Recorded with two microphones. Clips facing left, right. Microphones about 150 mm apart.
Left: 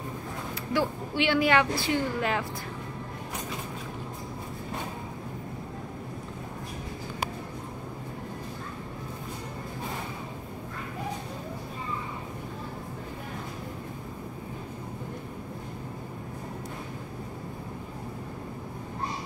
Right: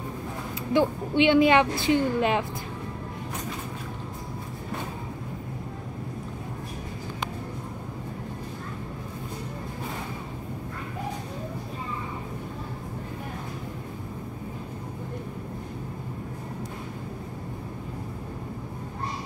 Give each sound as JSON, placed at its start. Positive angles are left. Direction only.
{"t": 0.7, "sound": "a woman's voice", "side_deg": -20}